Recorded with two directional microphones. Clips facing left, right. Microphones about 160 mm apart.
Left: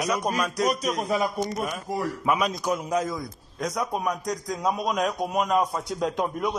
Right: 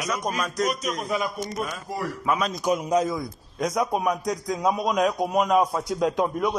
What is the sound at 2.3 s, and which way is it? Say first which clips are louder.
Speech: left 1 dB; 10° left (ahead or behind).